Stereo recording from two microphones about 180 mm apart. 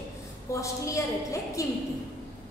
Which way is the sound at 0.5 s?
15° left (ahead or behind).